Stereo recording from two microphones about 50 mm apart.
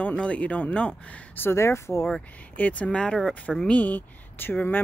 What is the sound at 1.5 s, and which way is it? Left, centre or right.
Speech, left.